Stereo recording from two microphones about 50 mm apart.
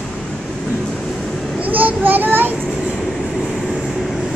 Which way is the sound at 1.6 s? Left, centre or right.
Right.